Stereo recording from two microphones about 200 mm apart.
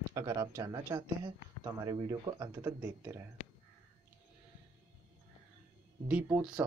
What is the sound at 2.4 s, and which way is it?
Speech, 15° right (ahead or behind).